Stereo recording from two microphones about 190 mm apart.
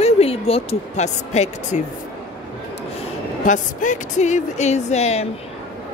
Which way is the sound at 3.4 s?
40° left (ahead or behind).